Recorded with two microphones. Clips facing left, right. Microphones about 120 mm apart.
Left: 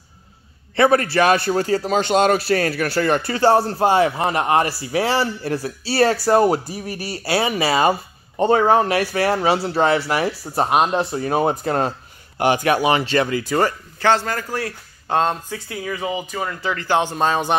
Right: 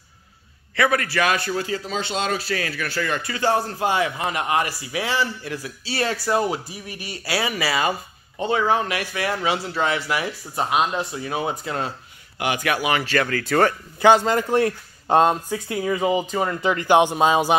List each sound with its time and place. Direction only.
0.7 s a man's voice: 30° left (ahead or behind)
1.8 s speech: 60° left (ahead or behind)
2.3 s a man's voice: 40° left (ahead or behind)
8.4 s a man's voice: 45° left (ahead or behind)
12.4 s speech: 35° left (ahead or behind)
13.4 s speech: 10° left (ahead or behind)
13.9 s a man's voice: 15° right (ahead or behind)